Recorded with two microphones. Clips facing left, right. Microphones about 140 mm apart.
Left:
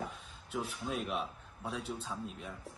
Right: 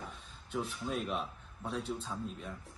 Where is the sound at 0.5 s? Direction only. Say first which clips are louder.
Right 1 dB; centre (ahead or behind).